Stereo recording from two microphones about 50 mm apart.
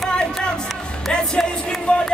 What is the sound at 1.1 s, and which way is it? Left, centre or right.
Music, centre.